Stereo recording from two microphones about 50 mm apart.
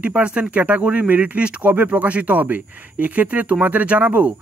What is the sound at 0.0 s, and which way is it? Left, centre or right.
Speech, right.